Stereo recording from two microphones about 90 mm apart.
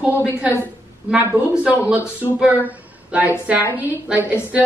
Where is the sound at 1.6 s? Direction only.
15° right (ahead or behind).